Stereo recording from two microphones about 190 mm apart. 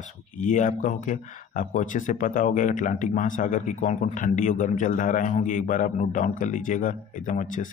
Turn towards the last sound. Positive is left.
turn(degrees=40)  # may be behind; listen again after turning